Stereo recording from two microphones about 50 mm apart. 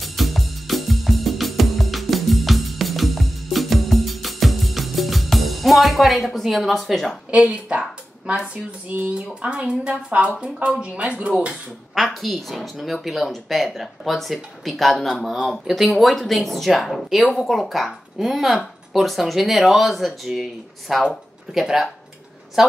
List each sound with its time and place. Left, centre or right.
0.0 s music: centre
7.2 s a woman's voice: right
9.3 s a woman's voice: right
11.9 s speech: centre